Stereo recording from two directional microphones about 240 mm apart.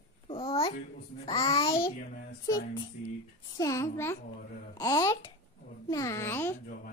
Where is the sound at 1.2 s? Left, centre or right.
Centre.